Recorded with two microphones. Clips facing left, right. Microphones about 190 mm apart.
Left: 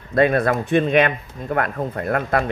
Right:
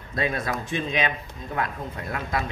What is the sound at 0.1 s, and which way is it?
Speech, 60° left (ahead or behind).